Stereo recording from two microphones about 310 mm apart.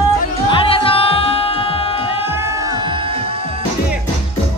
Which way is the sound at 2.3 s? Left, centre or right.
Centre.